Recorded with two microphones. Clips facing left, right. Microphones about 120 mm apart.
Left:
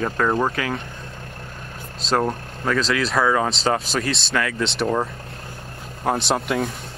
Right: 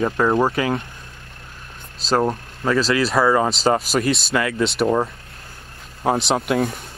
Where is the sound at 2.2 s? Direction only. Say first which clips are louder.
Right 2 dB; 5° right (ahead or behind).